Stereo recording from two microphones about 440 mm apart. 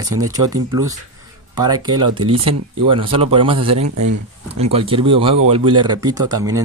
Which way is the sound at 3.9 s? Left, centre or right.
Right.